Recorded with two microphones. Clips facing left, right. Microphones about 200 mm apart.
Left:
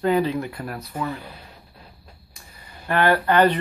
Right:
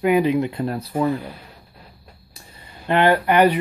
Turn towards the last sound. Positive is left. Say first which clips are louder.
# right 2 dB
turn(degrees=-15)  # may be behind; listen again after turning